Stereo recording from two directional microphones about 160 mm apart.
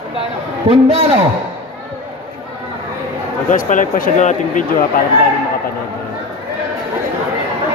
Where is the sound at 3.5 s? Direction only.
55° left (ahead or behind).